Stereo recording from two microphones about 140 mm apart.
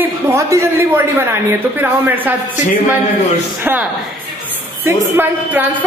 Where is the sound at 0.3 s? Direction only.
20° right (ahead or behind).